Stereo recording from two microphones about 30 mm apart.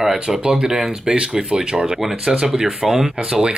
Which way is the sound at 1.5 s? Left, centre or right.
Right.